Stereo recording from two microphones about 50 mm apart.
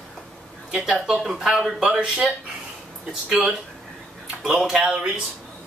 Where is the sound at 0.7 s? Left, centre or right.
Centre.